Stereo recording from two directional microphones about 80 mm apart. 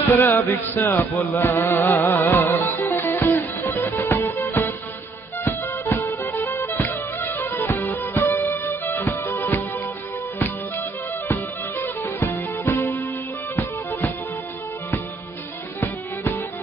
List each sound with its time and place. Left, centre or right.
0.2 s music: left